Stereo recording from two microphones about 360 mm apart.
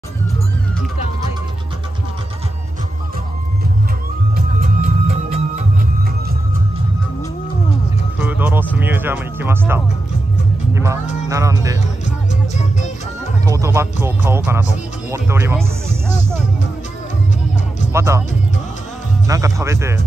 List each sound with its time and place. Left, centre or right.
4.4 s music: right
8.2 s music: centre
11.2 s speech: centre
12.5 s music: centre
13.5 s speech: centre
17.9 s speech: centre
19.2 s speech: centre